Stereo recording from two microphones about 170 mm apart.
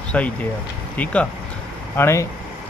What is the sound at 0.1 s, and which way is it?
Speech, 10° left (ahead or behind).